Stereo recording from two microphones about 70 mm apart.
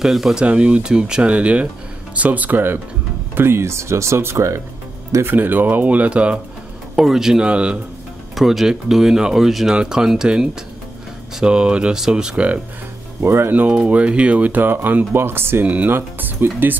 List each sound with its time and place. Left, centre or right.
0.0 s speech: centre; by 4.5 s right
5.2 s speech: right
8.4 s speech: centre
13.2 s speech: right
13.7 s speech: centre; by 15.6 s right
15.6 s speech: right